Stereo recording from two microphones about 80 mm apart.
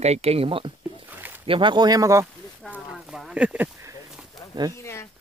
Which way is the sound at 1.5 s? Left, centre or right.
Right.